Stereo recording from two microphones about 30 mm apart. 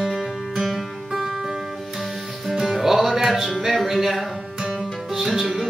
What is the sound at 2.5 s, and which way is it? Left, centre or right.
Music, centre.